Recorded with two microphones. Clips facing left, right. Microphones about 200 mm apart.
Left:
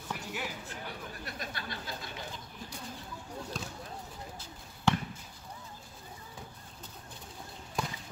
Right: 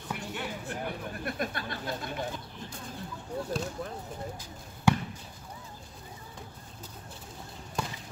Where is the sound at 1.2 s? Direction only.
50° right (ahead or behind).